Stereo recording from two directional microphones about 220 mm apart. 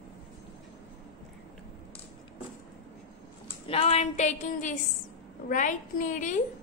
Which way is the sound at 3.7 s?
30° left (ahead or behind).